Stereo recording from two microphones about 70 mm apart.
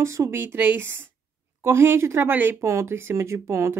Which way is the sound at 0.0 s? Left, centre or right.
Right.